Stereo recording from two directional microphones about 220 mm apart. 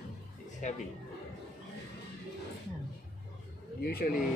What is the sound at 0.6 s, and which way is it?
Speech, 35° left (ahead or behind).